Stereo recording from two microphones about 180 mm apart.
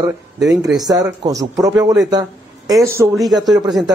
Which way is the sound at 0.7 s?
20° right (ahead or behind).